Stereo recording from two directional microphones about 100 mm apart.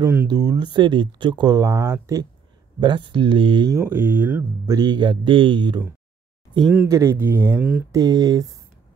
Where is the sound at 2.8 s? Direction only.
50° right (ahead or behind).